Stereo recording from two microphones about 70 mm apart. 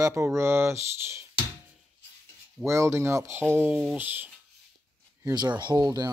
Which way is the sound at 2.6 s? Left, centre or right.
Right.